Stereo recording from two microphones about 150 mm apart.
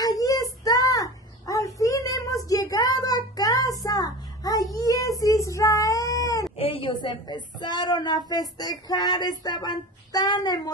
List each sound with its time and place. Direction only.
0.0 s child singing: 25° left (ahead or behind)
3.8 s a sound: 25° left (ahead or behind)
4.7 s cat: 25° left (ahead or behind)
6.6 s child singing: 35° left (ahead or behind)
9.4 s speech: 25° left (ahead or behind)